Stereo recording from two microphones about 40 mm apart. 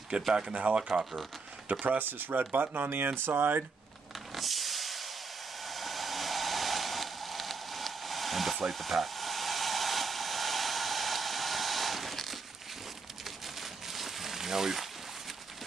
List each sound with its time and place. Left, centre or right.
0.3 s speech: centre
1.7 s speech: right
4.3 s vehicle: centre
5.6 s a sound: centre
8.7 s hair dryer: centre
13.2 s a sound: centre